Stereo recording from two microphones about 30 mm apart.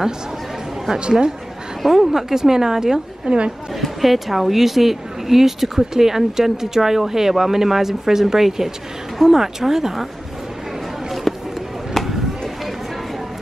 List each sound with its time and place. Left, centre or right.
1.9 s speech: centre
3.3 s a woman's voice: right
3.8 s speech: centre
11.3 s a sound: centre